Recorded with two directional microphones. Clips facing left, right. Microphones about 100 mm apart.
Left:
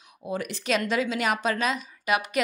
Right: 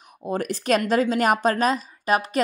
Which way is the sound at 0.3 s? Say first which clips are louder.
Right 5 dB; 45° right (ahead or behind).